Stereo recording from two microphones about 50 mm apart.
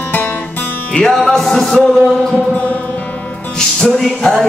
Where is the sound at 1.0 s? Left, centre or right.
Centre.